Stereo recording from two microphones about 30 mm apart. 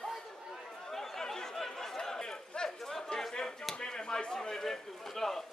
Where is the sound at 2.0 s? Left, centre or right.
Left.